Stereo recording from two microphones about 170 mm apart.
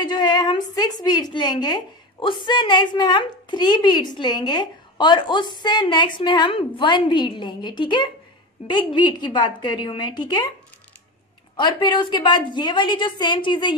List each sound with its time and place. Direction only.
0.0 s a woman's voice: 25° left (ahead or behind)
11.5 s a woman's voice: 25° left (ahead or behind)